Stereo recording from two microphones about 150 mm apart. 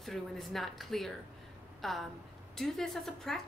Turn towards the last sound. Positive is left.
turn(degrees=0)  # may be behind; listen again after turning